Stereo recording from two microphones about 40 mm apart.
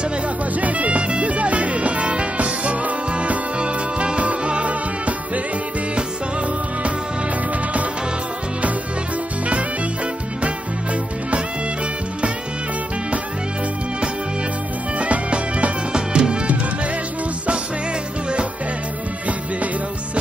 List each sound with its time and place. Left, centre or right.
0.6 s music: right
15.0 s music: right